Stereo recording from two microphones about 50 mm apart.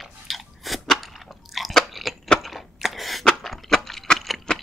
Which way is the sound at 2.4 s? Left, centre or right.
Centre.